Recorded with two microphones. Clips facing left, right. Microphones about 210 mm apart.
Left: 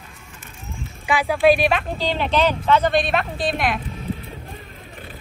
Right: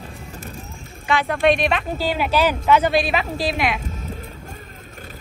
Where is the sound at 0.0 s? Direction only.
35° right (ahead or behind).